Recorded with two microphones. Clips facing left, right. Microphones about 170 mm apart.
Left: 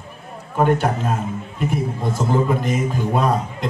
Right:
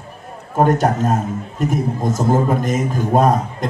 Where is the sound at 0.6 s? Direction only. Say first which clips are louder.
Right 3 dB; 40° right (ahead or behind).